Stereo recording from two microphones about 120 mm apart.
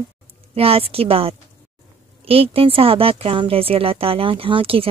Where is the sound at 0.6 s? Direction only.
55° right (ahead or behind).